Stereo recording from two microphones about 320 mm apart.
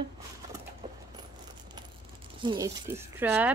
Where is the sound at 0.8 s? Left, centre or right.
Centre.